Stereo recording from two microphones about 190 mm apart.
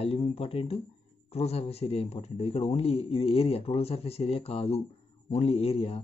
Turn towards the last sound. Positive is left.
turn(degrees=30)  # may be behind; listen again after turning